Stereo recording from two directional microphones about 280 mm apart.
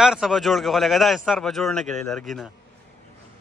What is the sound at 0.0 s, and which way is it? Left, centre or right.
A man's voice, centre.